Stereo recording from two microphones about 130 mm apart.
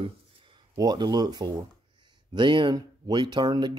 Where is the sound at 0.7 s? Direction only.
30° right (ahead or behind).